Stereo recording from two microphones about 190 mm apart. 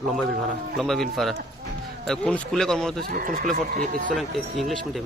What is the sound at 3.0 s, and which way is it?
Speech, 45° right (ahead or behind).